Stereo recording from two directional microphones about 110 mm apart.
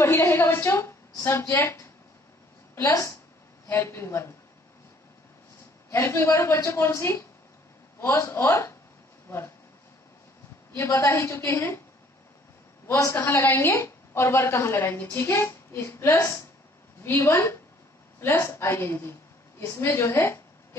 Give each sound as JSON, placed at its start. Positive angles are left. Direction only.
{"t": 0.0, "sound": "a woman's voice", "side_deg": 25}
{"t": 5.9, "sound": "a woman's voice", "side_deg": 20}
{"t": 10.8, "sound": "a woman's voice", "side_deg": 25}
{"t": 12.8, "sound": "a man's voice", "side_deg": 25}